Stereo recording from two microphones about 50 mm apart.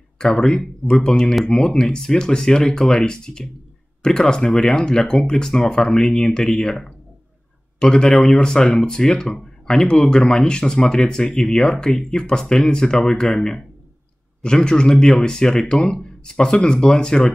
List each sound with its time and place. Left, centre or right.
0.2 s speech: centre
5.9 s speech: centre